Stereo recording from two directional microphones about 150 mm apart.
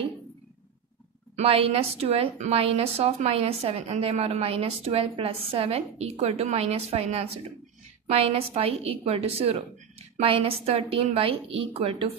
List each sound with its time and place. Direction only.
1.3 s a woman's voice: 40° right (ahead or behind)